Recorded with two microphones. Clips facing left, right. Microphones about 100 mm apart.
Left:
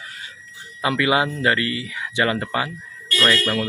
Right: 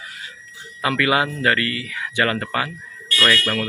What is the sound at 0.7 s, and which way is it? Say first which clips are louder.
Speech: even; 20° left (ahead or behind).